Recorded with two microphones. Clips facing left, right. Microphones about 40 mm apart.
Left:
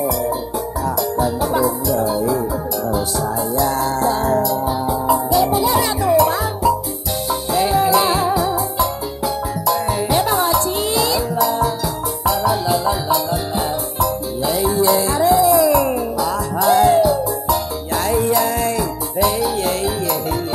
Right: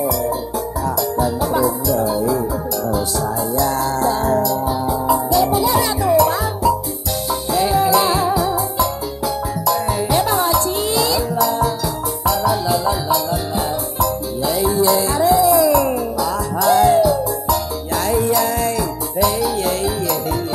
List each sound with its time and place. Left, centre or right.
0.8 s music: centre
3.5 s music: centre